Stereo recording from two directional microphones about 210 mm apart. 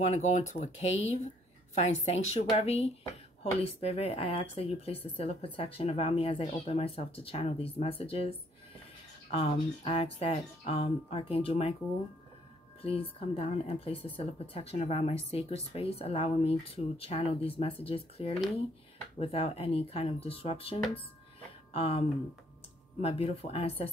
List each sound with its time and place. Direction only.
0.0 s speech: 35° left (ahead or behind)
12.8 s speech: 25° left (ahead or behind)